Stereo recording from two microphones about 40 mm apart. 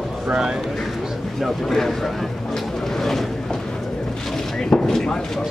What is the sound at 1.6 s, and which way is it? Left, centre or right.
Vehicle, centre.